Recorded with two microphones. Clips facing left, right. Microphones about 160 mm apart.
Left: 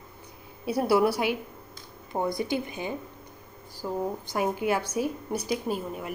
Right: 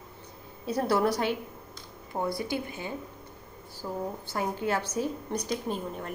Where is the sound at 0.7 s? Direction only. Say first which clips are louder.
Left 3 dB; 10° left (ahead or behind).